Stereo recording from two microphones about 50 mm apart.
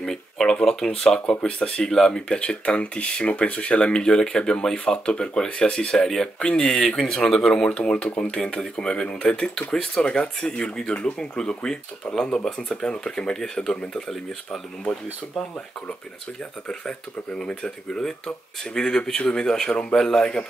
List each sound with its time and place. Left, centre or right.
0.0 s a sound: centre
0.6 s speech: centre
7.7 s speech: centre
16.6 s speech: centre